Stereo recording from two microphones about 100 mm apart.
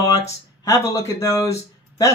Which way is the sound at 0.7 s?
30° left (ahead or behind).